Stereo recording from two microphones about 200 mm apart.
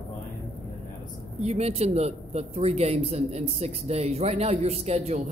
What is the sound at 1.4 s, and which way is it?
Speech, 30° right (ahead or behind).